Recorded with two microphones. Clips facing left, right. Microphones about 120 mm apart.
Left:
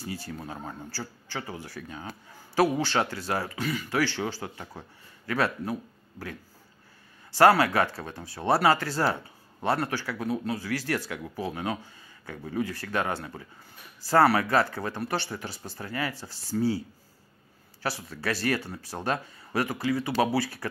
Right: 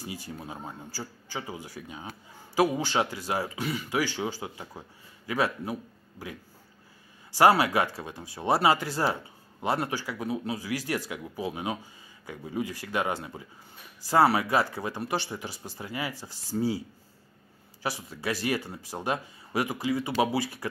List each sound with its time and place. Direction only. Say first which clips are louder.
0.0 s speech: left 2 dB; 15° right (ahead or behind)
7.3 s speech: left 1 dB; 15° right (ahead or behind)
17.8 s speech: left 1 dB; 15° right (ahead or behind)